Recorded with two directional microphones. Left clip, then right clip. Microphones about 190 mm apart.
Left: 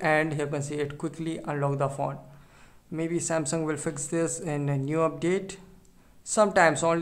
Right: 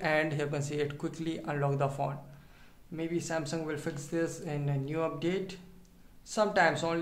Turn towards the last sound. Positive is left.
turn(degrees=35)  # may be behind; listen again after turning